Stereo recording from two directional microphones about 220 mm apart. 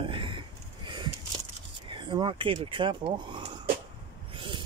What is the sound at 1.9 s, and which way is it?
Speech, 20° right (ahead or behind).